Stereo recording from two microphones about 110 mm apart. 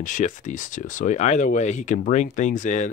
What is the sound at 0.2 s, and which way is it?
Speech, 90° left.